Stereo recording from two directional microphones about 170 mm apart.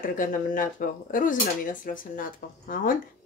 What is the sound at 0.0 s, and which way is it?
Speech, 50° left (ahead or behind).